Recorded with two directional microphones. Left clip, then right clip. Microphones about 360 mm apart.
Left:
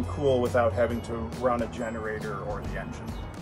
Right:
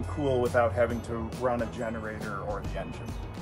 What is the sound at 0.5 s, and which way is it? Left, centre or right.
Speech, right.